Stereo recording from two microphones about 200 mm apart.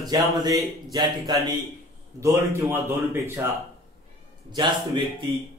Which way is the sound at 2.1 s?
15° right (ahead or behind).